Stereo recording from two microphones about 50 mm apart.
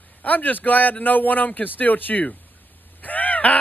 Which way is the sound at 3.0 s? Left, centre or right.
Left.